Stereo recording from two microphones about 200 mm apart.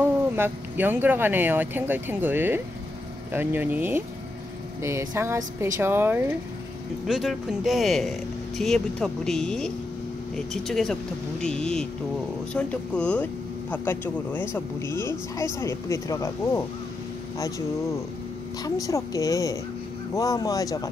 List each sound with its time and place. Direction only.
0.4 s speech: 10° right (ahead or behind); by 16.6 s 15° left (ahead or behind)
18.6 s speech: 15° left (ahead or behind)